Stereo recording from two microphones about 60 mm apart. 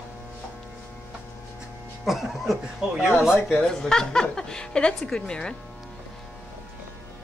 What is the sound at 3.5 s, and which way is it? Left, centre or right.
A woman's voice, centre.